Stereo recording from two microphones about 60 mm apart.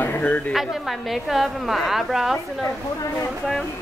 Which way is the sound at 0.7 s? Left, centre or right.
Centre.